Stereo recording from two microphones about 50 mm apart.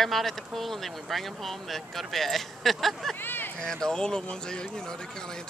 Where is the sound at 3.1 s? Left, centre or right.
Left.